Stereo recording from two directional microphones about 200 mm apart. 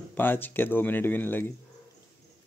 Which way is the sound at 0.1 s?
10° left (ahead or behind).